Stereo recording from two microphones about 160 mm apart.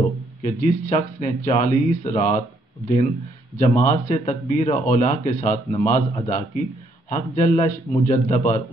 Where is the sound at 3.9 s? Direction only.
45° left (ahead or behind).